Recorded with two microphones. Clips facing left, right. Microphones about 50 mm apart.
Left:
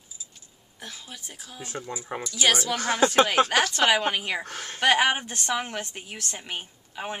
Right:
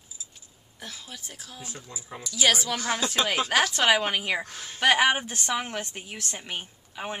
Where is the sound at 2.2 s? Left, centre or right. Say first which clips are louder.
Even; centre.